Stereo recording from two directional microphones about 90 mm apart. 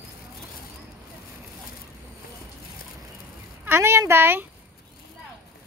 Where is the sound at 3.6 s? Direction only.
25° right (ahead or behind).